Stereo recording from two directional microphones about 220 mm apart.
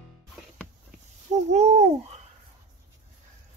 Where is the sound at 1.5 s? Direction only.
30° right (ahead or behind).